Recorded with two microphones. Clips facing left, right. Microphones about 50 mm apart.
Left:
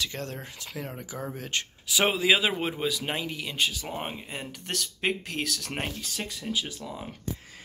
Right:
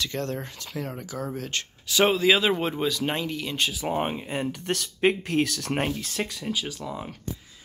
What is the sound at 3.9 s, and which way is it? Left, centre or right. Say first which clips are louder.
Speech: right 7 dB; right.